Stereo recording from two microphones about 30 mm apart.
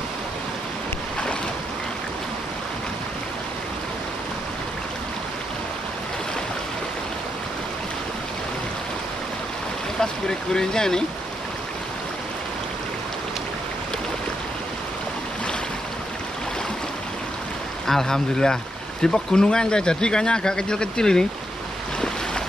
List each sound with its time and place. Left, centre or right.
9.9 s speech: left
17.8 s speech: centre